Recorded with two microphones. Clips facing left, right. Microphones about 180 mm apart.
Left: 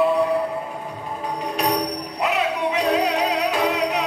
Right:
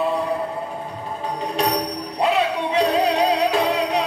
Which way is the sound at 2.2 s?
30° right (ahead or behind).